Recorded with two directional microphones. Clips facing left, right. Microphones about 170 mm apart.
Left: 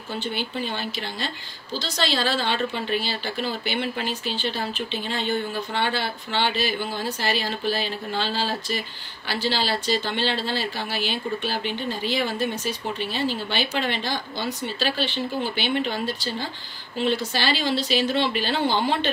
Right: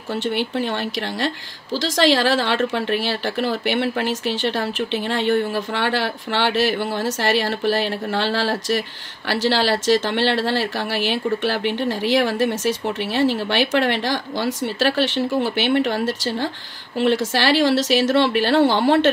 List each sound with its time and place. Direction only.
1.2 s a woman's voice: 90° right
11.4 s speech: 75° right (ahead or behind)